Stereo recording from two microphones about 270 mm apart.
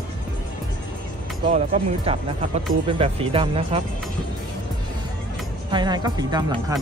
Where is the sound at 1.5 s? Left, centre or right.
Right.